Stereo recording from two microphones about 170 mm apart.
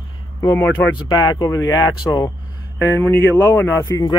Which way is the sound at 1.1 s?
25° left (ahead or behind).